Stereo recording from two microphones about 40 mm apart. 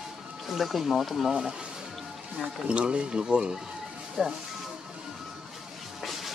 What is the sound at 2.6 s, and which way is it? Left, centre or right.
Speech, right.